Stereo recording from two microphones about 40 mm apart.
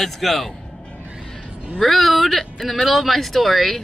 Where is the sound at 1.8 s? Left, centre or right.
Centre.